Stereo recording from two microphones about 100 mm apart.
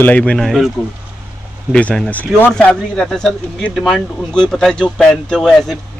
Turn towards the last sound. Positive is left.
turn(degrees=0)  # may be behind; listen again after turning